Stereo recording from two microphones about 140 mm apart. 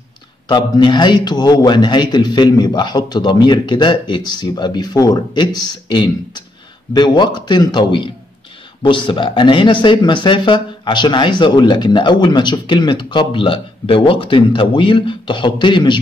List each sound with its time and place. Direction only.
0.5 s speech: 30° left (ahead or behind)